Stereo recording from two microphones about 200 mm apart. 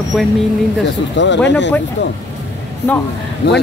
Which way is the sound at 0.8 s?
65° left (ahead or behind).